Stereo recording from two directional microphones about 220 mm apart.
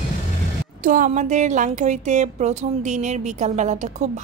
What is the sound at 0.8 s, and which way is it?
A woman's voice, 35° right (ahead or behind).